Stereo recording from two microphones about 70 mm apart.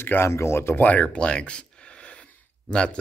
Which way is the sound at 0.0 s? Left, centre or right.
Left.